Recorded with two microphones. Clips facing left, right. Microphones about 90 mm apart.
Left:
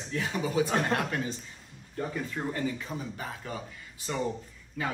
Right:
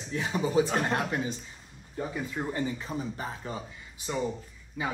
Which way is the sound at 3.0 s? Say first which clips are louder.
Right 3 dB; 30° right (ahead or behind).